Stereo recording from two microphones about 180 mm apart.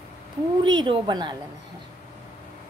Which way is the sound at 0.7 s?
25° right (ahead or behind).